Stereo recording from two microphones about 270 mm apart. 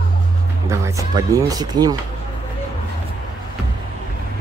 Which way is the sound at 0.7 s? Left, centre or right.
Centre.